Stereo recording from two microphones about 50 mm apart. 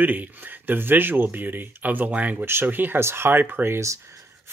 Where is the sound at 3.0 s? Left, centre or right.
Right.